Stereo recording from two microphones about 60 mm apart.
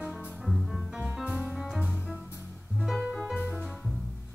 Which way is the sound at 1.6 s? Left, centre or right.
Centre.